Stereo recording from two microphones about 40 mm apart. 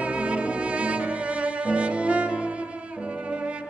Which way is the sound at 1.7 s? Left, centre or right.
Right.